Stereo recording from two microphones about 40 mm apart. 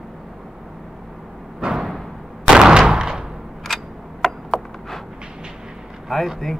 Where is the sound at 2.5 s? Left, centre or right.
Centre.